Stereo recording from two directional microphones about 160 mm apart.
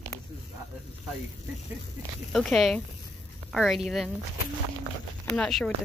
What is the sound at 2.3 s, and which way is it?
Speech, 5° left (ahead or behind).